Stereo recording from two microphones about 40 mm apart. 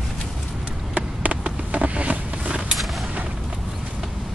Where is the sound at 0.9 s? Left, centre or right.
Right.